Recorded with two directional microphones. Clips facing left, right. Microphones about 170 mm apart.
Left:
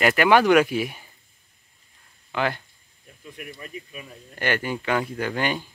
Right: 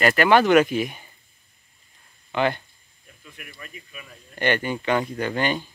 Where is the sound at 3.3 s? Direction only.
30° left (ahead or behind).